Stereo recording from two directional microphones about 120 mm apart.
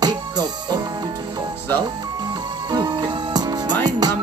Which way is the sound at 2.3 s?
35° right (ahead or behind).